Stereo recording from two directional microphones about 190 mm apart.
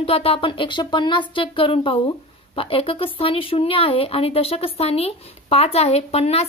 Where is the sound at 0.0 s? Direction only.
30° left (ahead or behind).